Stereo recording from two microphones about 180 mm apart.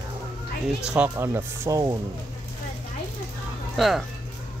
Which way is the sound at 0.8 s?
5° right (ahead or behind).